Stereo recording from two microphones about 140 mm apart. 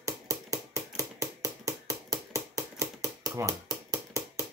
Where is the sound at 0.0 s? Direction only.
20° right (ahead or behind).